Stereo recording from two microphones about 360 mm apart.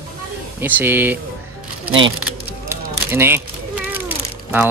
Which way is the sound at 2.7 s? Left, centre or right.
Centre.